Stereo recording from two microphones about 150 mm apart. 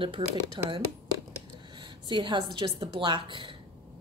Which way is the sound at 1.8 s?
30° right (ahead or behind).